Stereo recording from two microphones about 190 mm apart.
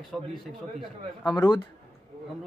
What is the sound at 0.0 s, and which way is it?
Speech, centre (ahead or behind).